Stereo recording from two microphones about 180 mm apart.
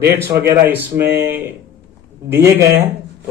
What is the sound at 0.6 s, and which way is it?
A man's voice, 15° right (ahead or behind).